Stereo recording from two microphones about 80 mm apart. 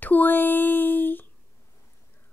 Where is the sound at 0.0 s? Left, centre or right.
Left.